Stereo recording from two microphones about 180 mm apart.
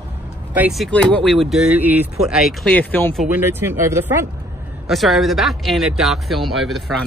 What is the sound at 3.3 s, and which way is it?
Speech, 10° right (ahead or behind).